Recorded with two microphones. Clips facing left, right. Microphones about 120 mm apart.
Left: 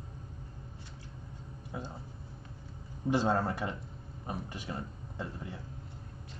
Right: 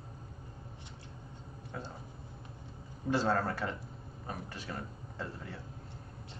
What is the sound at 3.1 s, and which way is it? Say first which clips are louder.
Speech: left 2 dB; 15° left (ahead or behind).